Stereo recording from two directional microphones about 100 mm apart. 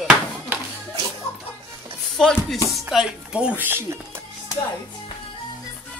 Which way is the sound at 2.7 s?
5° right (ahead or behind).